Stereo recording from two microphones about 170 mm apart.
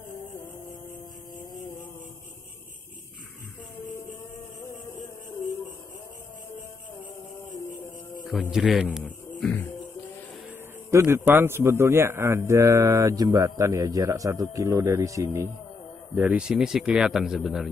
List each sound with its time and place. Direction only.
8.3 s speech: centre (ahead or behind)
9.4 s music: 10° left (ahead or behind)
10.9 s a man's voice: 15° right (ahead or behind)